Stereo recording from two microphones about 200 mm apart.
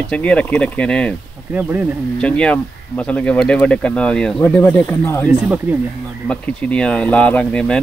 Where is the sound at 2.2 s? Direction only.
5° left (ahead or behind).